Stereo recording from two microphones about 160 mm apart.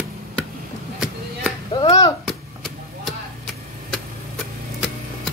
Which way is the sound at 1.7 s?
30° left (ahead or behind).